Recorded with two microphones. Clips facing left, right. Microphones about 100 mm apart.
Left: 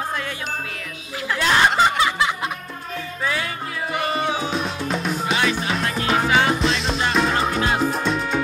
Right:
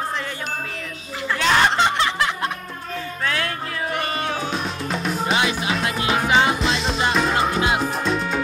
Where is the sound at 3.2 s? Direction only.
5° left (ahead or behind).